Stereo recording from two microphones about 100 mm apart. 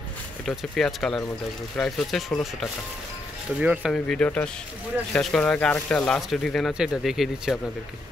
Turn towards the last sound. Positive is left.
turn(degrees=-5)  # may be behind; listen again after turning